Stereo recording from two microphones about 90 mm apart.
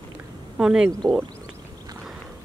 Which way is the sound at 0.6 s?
10° right (ahead or behind).